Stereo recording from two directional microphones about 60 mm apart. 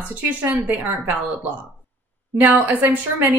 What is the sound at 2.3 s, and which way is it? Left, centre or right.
Speech, right.